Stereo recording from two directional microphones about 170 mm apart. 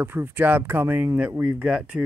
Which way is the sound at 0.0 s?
15° right (ahead or behind).